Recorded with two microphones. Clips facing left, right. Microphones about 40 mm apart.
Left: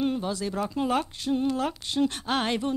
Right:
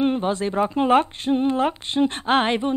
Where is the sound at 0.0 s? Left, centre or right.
Right.